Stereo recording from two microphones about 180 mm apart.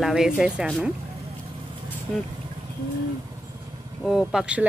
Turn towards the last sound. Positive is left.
turn(degrees=0)  # may be behind; listen again after turning